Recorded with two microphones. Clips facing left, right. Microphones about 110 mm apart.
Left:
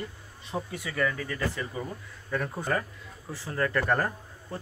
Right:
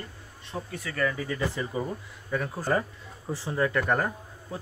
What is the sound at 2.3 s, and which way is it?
Speech, centre (ahead or behind).